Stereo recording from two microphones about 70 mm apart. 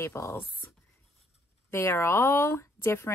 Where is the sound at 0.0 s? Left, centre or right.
Left.